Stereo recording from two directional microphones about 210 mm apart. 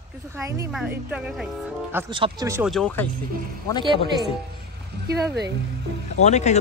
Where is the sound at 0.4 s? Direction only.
15° right (ahead or behind).